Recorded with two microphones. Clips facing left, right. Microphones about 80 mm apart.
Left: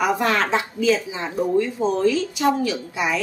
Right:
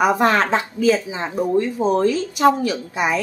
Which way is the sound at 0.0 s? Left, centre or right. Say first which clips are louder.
Right 4 dB; right.